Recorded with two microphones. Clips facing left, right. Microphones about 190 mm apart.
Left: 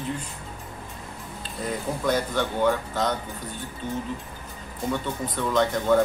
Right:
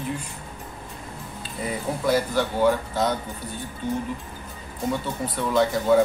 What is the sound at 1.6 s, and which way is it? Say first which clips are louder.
Speech: right 1 dB; 5° right (ahead or behind).